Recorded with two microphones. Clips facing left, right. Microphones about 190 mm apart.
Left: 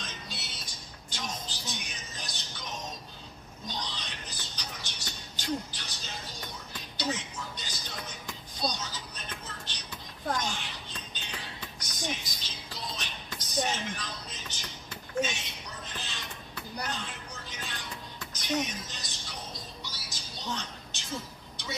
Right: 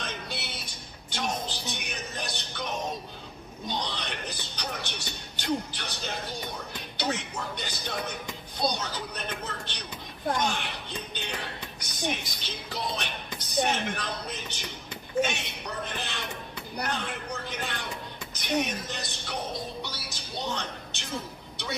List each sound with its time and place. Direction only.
0.0 s music: 60° right (ahead or behind)
10.3 s a sound: 60° right (ahead or behind)
16.7 s music: 60° right (ahead or behind)